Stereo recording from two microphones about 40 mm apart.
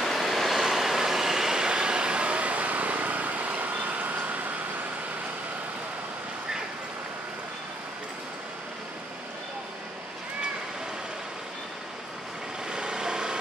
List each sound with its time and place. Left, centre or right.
0.0 s vehicle: centre; by 4.5 s right
12.6 s vehicle: centre